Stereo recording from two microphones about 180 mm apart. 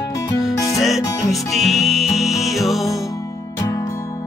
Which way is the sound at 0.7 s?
Centre (ahead or behind).